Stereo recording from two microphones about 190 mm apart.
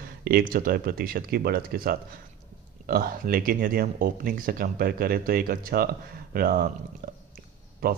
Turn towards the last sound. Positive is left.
turn(degrees=-50)  # may be behind; listen again after turning